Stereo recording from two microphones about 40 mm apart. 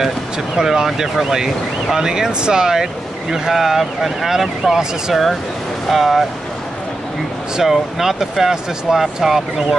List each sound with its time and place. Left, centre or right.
0.6 s speech: centre
7.6 s speech: centre